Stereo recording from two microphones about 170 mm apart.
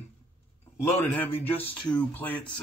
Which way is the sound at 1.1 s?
10° left (ahead or behind).